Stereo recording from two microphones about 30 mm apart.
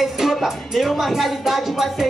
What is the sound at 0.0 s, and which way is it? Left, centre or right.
Speech, centre.